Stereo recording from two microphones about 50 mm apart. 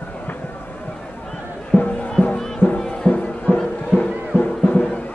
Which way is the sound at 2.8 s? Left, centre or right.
Centre.